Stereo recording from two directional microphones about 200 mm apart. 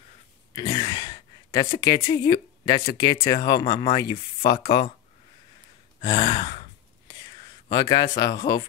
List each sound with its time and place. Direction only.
0.6 s speech: 25° left (ahead or behind)
5.9 s gasp: 25° left (ahead or behind)
7.7 s speech: 20° left (ahead or behind)